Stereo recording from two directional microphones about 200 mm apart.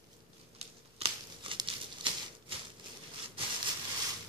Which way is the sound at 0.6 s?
30° right (ahead or behind).